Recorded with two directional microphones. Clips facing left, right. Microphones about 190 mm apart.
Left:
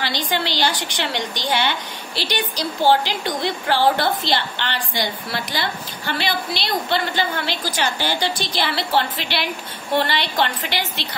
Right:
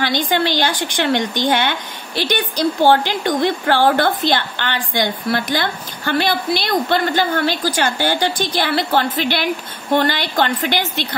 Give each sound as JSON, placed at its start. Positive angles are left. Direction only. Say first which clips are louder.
{"t": 0.0, "sound": "a woman's voice", "louder": "right 6 dB", "side_deg": -50}